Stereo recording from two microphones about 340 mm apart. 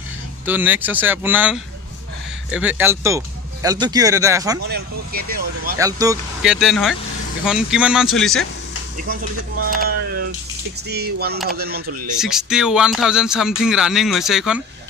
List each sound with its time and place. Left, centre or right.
0.5 s speech: centre
4.6 s speech: right
5.8 s speech: centre
8.9 s speech: right
10.9 s speech: right
12.2 s speech: centre